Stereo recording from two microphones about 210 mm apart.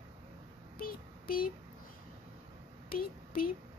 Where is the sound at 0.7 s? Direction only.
45° left (ahead or behind).